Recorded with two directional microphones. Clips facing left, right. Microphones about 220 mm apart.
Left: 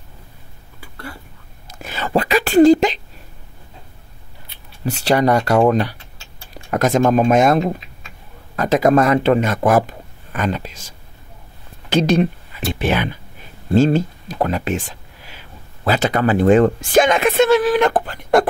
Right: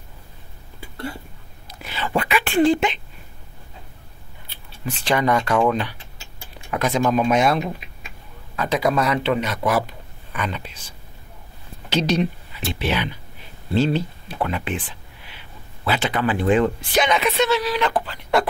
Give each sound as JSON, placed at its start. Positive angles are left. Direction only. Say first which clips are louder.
{"t": 0.7, "sound": "a sound", "louder": "right 4 dB", "side_deg": -25}
{"t": 1.7, "sound": "speech", "louder": "left 4 dB", "side_deg": 45}
{"t": 5.0, "sound": "speech", "louder": "left 5 dB", "side_deg": 40}
{"t": 11.9, "sound": "speech", "louder": "left 5 dB", "side_deg": 50}